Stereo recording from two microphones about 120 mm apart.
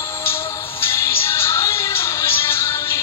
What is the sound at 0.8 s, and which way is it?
Music, 20° left (ahead or behind).